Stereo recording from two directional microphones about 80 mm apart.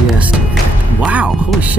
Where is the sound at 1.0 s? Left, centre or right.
Centre.